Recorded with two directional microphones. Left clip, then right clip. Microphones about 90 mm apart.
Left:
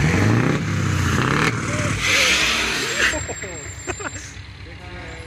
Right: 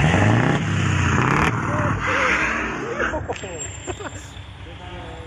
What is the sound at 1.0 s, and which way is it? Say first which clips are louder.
Vehicle: even; 30° right (ahead or behind).